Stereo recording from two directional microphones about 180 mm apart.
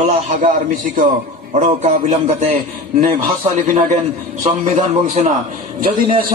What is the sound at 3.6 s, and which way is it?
A man's voice, 40° right (ahead or behind).